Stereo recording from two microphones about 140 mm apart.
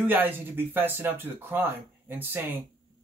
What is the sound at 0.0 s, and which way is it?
Speech, 15° right (ahead or behind).